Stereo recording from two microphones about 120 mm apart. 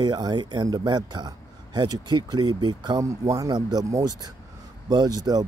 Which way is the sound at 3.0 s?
25° right (ahead or behind).